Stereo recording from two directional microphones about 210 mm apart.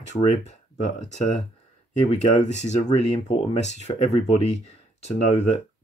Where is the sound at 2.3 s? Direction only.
35° left (ahead or behind).